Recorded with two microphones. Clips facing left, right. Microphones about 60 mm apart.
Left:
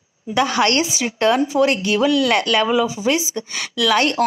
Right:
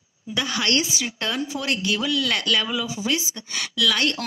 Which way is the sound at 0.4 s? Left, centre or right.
Left.